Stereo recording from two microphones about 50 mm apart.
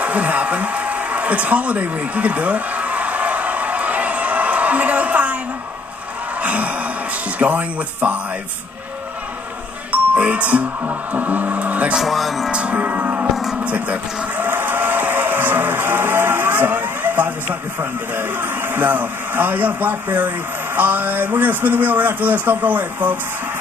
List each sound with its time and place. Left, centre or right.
0.0 s a sound: right
6.4 s gasp: right
7.3 s speech: right
9.8 s doorbell: right
11.1 s a man's voice: right
12.0 s music: centre
12.4 s speech: right
12.7 s a man's voice: right
14.4 s music: right
18.1 s a man's voice: right